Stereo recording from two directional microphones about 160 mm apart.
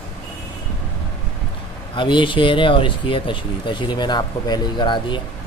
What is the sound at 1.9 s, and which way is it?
Speech, 30° left (ahead or behind).